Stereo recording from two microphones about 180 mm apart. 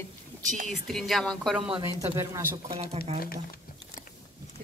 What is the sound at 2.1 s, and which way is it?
Speech, 15° right (ahead or behind).